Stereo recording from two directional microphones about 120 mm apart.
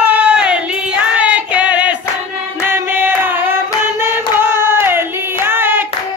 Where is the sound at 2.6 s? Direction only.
20° right (ahead or behind).